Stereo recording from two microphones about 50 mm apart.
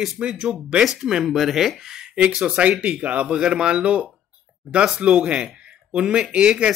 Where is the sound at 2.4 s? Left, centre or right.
Centre.